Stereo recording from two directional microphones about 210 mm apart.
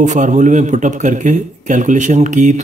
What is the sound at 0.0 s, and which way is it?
Speech, 35° right (ahead or behind).